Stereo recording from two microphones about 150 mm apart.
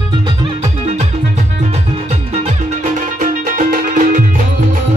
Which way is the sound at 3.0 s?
60° right (ahead or behind).